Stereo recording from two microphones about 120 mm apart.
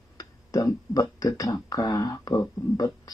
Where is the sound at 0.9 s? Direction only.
30° left (ahead or behind).